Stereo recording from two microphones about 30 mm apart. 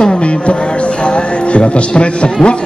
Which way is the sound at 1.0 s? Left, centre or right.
Left.